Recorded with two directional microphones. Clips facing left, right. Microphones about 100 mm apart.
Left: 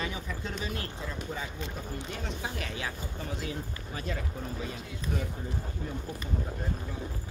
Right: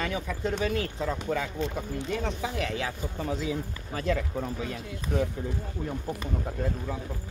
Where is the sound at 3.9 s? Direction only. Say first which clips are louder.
Right 9 dB; 90° right.